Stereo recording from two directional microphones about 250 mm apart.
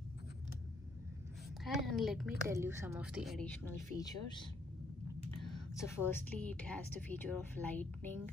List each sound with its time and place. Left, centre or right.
1.6 s a woman's voice: centre
3.9 s a woman's voice: centre
6.0 s a woman's voice: centre